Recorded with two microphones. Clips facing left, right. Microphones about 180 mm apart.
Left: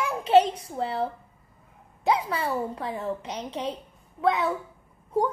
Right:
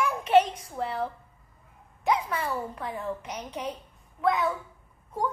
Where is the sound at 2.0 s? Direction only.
30° left (ahead or behind).